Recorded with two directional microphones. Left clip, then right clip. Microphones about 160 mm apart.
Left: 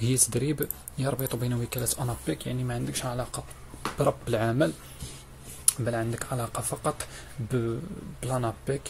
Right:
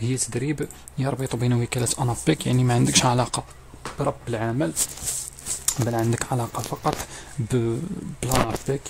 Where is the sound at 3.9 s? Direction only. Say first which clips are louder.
Even; 20° right (ahead or behind).